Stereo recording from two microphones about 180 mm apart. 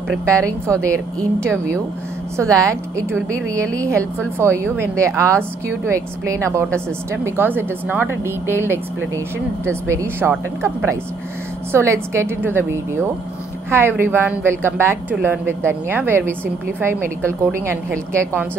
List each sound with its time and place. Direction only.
0.8 s a woman's voice: 15° right (ahead or behind)